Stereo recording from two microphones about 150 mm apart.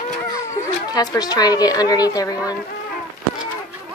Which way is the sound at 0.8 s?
25° left (ahead or behind).